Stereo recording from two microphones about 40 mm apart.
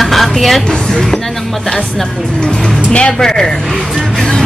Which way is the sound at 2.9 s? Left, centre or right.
Centre.